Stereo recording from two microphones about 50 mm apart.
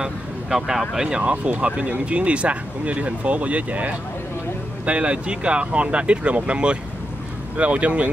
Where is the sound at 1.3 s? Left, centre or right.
Right.